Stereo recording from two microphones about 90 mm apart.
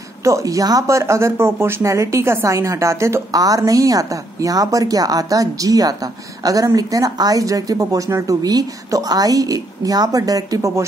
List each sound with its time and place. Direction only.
0.2 s speech: 35° right (ahead or behind)